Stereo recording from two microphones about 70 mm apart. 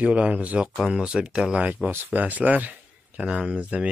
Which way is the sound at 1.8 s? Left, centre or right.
Right.